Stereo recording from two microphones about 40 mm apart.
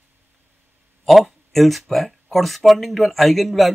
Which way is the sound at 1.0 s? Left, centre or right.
Centre.